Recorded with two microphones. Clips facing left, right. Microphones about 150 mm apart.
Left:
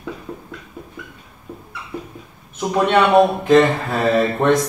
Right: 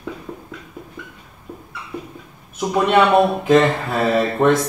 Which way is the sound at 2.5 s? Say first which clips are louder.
Right 1 dB; 5° right (ahead or behind).